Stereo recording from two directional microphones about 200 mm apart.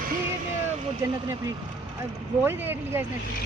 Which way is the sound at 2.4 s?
10° right (ahead or behind).